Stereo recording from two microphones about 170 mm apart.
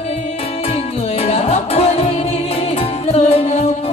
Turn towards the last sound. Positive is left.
turn(degrees=40)  # may be behind; listen again after turning